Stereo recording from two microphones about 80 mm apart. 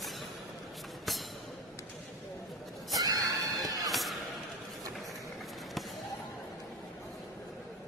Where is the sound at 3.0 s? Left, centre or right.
Right.